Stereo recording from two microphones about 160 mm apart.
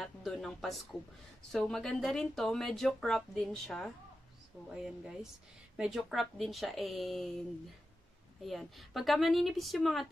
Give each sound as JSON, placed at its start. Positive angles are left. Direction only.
{"t": 0.0, "sound": "speech", "side_deg": 0}
{"t": 8.5, "sound": "speech", "side_deg": 0}